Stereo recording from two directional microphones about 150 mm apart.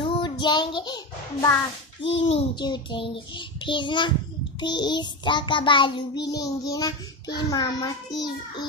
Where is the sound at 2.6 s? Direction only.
30° left (ahead or behind).